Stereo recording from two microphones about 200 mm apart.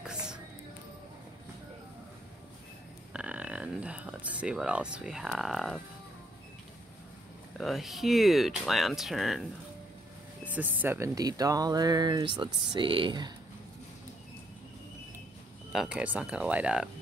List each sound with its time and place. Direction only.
0.0 s music: 5° right (ahead or behind)
3.1 s speech: 5° right (ahead or behind)
7.5 s speech: centre (ahead or behind)
10.4 s speech: 10° right (ahead or behind)
15.7 s speech: 5° right (ahead or behind)